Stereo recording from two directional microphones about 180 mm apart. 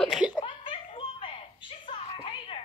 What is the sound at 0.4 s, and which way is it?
Giggle, 30° left (ahead or behind).